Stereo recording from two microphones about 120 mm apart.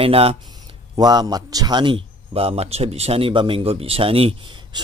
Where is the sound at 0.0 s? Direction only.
55° right (ahead or behind).